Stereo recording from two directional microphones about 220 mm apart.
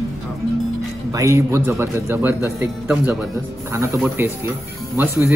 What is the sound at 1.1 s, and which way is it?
A man's voice, 15° right (ahead or behind).